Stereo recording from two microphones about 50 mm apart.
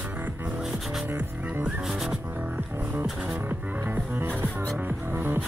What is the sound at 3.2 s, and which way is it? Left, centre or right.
Music, right.